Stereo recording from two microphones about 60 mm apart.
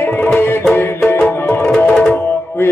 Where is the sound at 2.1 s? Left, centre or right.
Left.